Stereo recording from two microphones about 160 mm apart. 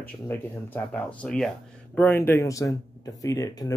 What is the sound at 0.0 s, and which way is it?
Speech, 10° left (ahead or behind).